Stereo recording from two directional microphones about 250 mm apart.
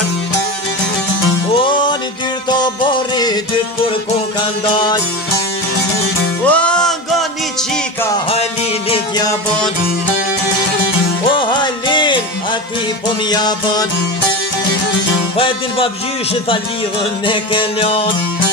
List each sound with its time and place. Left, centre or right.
1.5 s music: centre
4.6 s music: centre
6.4 s music: centre
11.3 s music: centre
13.3 s music: centre
15.3 s music: left
17.3 s music: centre